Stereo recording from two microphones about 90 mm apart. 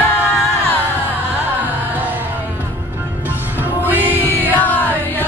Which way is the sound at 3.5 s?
20° right (ahead or behind).